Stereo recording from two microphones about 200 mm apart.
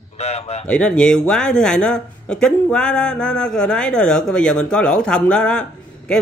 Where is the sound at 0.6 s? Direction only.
5° left (ahead or behind).